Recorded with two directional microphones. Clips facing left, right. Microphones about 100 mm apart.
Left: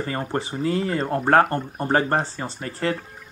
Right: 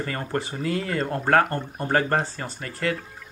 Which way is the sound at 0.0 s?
25° left (ahead or behind).